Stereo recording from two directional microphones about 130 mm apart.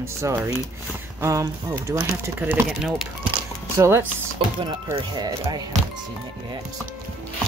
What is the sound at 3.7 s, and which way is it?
Speech, 20° right (ahead or behind).